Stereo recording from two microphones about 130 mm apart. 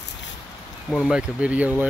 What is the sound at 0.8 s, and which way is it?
Speech, 5° left (ahead or behind).